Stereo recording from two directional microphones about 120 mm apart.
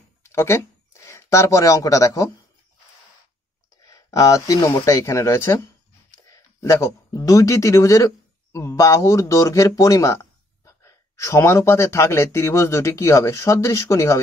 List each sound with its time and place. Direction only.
0.2 s speech: 20° left (ahead or behind)
3.8 s speech: 30° left (ahead or behind)